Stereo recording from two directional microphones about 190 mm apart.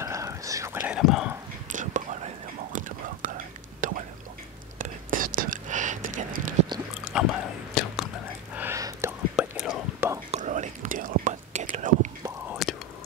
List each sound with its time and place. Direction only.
0.0 s whispering: 15° right (ahead or behind)
1.7 s whispering: 40° right (ahead or behind)
3.8 s whispering: 45° right (ahead or behind)
7.1 s a sound: 5° right (ahead or behind)
7.7 s whispering: centre (ahead or behind)
8.5 s whispering: 15° right (ahead or behind)
9.4 s whispering: 5° right (ahead or behind)
10.3 s whispering: 40° right (ahead or behind)
12.6 s whispering: centre (ahead or behind)